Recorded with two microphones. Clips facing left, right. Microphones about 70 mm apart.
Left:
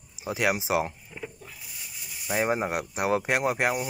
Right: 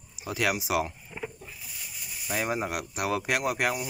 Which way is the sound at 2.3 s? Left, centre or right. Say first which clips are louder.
Left 4 dB; left.